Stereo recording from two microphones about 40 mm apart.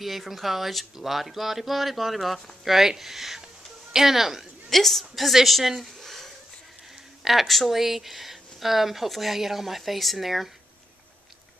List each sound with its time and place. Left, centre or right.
0.0 s speech: centre
4.6 s speech: centre
5.9 s a sound: centre
7.2 s speech: centre